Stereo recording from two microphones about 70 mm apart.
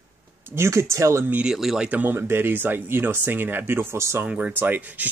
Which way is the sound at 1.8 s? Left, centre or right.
Right.